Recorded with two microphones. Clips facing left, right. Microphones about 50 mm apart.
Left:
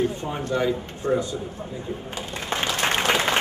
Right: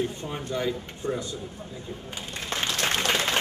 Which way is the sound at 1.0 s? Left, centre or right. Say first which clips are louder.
Left 7 dB; left.